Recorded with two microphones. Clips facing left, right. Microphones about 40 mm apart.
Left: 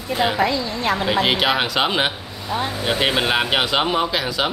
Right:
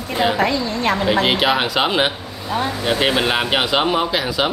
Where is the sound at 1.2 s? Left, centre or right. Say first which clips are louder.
Right 2 dB; centre.